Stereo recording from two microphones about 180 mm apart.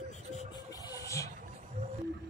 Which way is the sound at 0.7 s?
20° left (ahead or behind).